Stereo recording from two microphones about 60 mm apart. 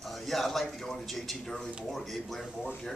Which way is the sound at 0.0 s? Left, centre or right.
Centre.